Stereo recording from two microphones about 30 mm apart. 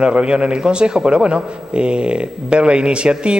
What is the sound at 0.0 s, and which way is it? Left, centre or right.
A man's voice, right.